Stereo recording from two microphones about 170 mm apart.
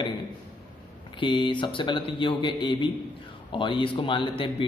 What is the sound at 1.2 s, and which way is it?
A man's voice, 30° left (ahead or behind).